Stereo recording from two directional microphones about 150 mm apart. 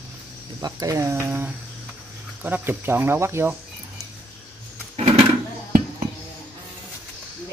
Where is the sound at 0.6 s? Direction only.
25° right (ahead or behind).